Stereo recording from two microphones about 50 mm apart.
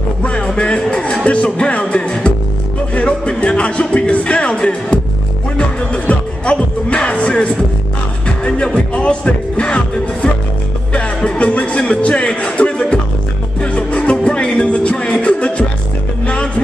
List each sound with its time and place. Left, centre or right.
0.2 s music: left
6.0 s music: left